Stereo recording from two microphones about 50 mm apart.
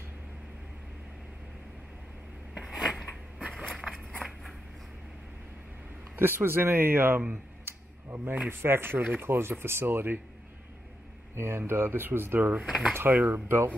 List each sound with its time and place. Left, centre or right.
2.5 s a sound: centre
4.2 s a sound: centre
6.1 s speech: right
7.6 s a sound: right
8.5 s speech: right
11.3 s speech: right
12.4 s speech: right
12.6 s speech: centre
12.9 s speech: right